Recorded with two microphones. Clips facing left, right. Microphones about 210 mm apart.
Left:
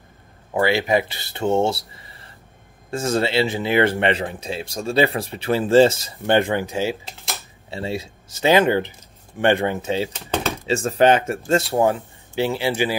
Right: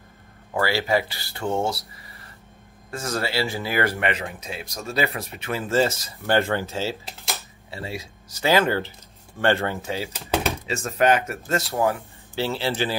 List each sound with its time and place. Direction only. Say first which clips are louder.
0.5 s speech: left 4 dB; 20° left (ahead or behind)
7.7 s speech: left 6 dB; 25° left (ahead or behind)
10.1 s speech: even; 5° right (ahead or behind)
10.7 s speech: left 5 dB; 30° left (ahead or behind)
12.4 s speech: left 4 dB; 15° left (ahead or behind)